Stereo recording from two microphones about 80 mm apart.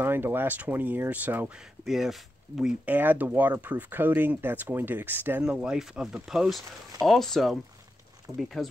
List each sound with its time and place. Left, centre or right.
0.0 s speech: right
1.5 s speech: centre
2.8 s speech: right
5.4 s speech: centre